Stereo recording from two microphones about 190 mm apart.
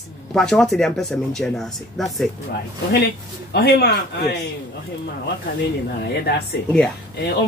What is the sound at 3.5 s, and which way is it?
Speech, 60° left (ahead or behind).